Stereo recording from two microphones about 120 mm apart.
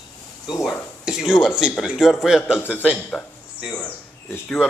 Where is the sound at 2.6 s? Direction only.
15° left (ahead or behind).